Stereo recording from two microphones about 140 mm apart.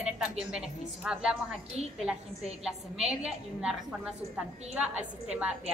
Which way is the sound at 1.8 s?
50° right (ahead or behind).